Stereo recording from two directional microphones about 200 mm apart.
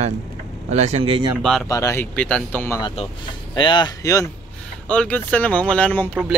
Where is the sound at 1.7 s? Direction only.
15° left (ahead or behind).